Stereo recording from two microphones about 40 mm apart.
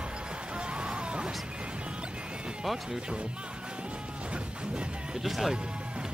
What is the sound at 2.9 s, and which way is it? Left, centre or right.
Speech, right.